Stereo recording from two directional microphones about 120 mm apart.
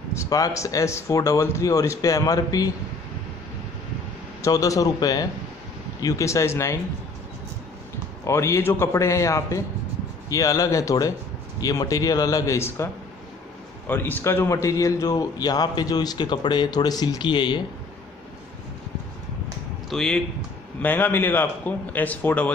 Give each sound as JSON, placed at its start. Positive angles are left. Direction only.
{"t": 0.1, "sound": "speech", "side_deg": 25}
{"t": 4.4, "sound": "speech", "side_deg": 30}
{"t": 8.3, "sound": "a man's voice", "side_deg": 20}
{"t": 19.9, "sound": "a man's voice", "side_deg": 5}